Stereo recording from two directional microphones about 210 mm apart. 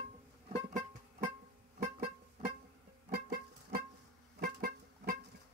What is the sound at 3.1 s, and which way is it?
Music, 50° right (ahead or behind).